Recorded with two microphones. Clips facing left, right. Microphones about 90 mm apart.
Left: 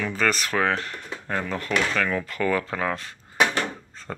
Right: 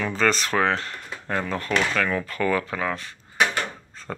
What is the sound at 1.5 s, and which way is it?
Speech, 15° left (ahead or behind).